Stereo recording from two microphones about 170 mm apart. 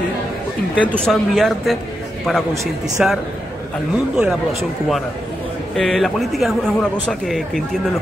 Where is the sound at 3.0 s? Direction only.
5° right (ahead or behind).